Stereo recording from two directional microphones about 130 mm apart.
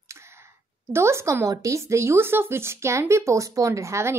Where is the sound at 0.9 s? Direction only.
20° right (ahead or behind).